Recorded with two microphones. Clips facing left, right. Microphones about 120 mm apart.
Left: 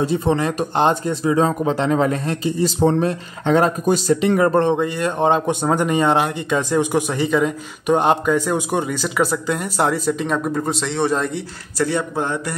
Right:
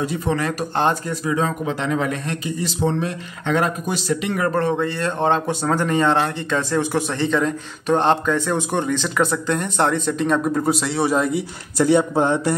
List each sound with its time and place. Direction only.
0.0 s speech: 30° left (ahead or behind); by 11.4 s 5° right (ahead or behind)
11.8 s speech: 20° right (ahead or behind)